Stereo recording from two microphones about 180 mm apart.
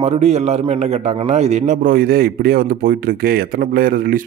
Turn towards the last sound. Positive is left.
turn(degrees=-50)  # may be behind; listen again after turning